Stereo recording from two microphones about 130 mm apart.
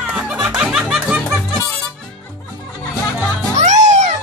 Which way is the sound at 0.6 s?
5° right (ahead or behind).